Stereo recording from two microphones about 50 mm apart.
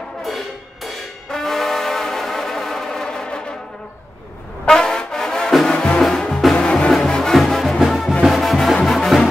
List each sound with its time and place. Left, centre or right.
0.8 s brass instrument: centre
4.6 s music: centre
6.5 s music: centre